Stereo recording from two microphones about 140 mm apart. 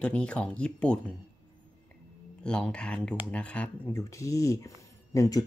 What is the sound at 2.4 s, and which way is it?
Speech, 5° left (ahead or behind).